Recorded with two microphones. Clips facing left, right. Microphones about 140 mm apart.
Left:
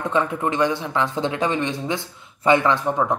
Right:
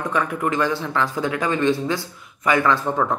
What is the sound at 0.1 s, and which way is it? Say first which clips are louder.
Speech: left 1 dB; 25° left (ahead or behind).